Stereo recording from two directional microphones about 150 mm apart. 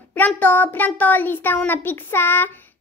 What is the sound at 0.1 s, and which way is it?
A child's voice, 10° left (ahead or behind).